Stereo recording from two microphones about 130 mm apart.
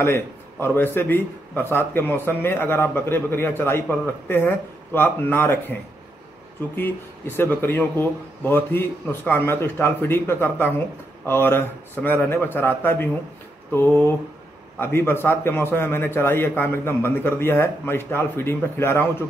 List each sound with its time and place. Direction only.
0.0 s a man's voice: 15° left (ahead or behind)